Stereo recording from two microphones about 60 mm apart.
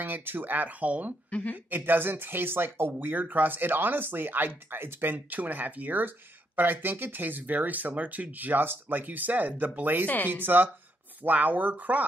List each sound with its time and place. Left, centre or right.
0.0 s speech: right
1.3 s speech: left
1.7 s speech: right
10.0 s speech: left
10.3 s speech: right